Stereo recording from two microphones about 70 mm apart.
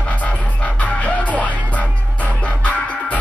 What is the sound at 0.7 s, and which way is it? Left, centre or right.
Music, left.